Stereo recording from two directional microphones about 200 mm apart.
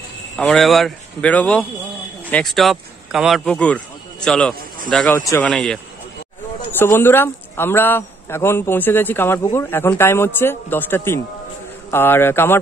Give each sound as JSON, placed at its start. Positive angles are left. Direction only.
{"t": 0.4, "sound": "speech", "side_deg": 5}
{"t": 6.8, "sound": "a man's voice", "side_deg": 10}